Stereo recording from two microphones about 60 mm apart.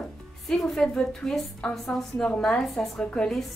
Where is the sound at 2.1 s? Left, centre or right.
Left.